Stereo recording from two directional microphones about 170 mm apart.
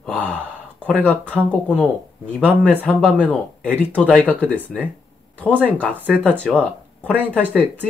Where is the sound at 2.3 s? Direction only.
5° left (ahead or behind).